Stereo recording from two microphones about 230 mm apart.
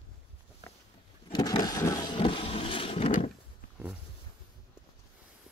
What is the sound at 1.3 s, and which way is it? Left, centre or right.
Vehicle, centre.